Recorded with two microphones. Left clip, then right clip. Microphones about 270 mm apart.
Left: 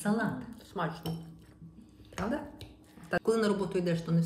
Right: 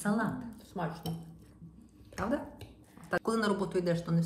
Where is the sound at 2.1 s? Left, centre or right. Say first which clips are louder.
Right 1 dB; centre.